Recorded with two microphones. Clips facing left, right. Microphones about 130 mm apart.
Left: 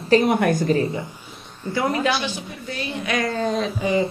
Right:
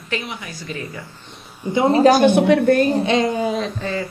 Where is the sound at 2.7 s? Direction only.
45° right (ahead or behind).